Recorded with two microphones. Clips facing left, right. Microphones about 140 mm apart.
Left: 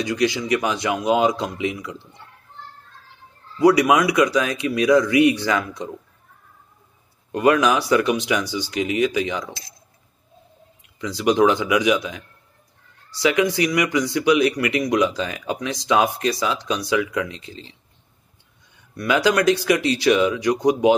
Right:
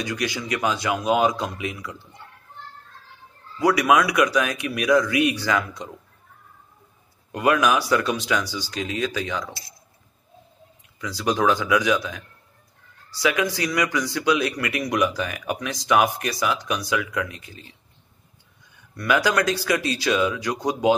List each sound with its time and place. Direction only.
0.0 s speech: 25° left (ahead or behind)
3.5 s speech: 20° left (ahead or behind)
7.3 s speech: 25° left (ahead or behind)
11.0 s speech: 20° left (ahead or behind)
18.9 s speech: 20° left (ahead or behind)